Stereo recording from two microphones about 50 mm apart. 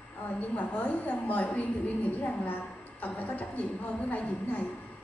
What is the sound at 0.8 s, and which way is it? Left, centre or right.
Speech, left.